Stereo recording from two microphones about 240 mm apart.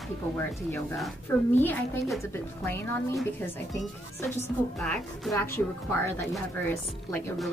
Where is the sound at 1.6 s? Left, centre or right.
Centre.